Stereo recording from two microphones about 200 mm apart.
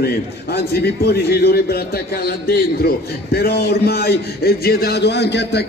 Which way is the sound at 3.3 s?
50° left (ahead or behind).